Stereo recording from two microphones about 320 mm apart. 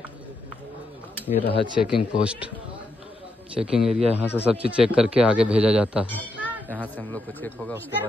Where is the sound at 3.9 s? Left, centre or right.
Centre.